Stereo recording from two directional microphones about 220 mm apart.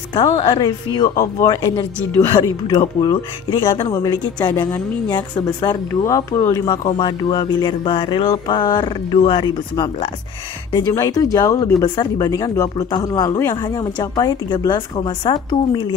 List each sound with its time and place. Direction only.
0.1 s speech: 25° left (ahead or behind)